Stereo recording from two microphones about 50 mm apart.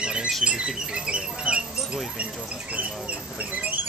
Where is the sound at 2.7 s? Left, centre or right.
Right.